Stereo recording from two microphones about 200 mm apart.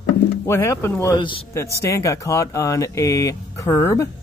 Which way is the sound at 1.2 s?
25° left (ahead or behind).